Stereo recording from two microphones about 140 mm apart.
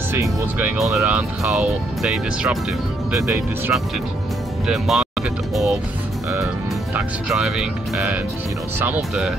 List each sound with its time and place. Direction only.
0.1 s speech: 15° right (ahead or behind)
0.7 s speech: centre (ahead or behind)
3.3 s speech: 15° right (ahead or behind)
4.6 s speech: centre (ahead or behind)
7.0 s speech: 5° right (ahead or behind)